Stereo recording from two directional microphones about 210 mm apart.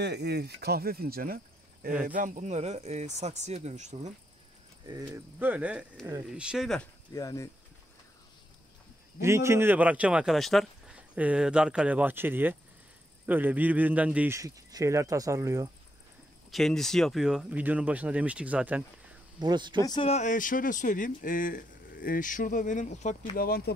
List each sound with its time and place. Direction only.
0.0 s speech: 50° right (ahead or behind); by 4.1 s 35° right (ahead or behind)
4.8 s speech: 15° right (ahead or behind); by 6.9 s centre (ahead or behind)
7.2 s speech: 15° left (ahead or behind)
9.2 s speech: 15° right (ahead or behind)
16.4 s speech: centre (ahead or behind)
19.4 s speech: 20° right (ahead or behind)
19.8 s speech: 20° left (ahead or behind); by 23.7 s 45° left (ahead or behind)